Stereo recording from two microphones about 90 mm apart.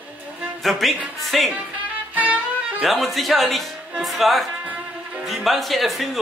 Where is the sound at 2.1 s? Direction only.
15° right (ahead or behind).